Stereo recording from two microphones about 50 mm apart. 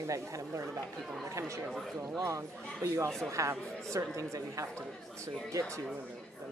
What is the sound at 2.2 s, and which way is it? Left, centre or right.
A woman's voice, right.